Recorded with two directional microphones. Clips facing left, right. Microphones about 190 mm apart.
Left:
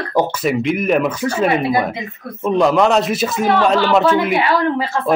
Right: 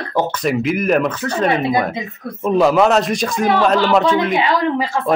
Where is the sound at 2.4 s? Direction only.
5° right (ahead or behind).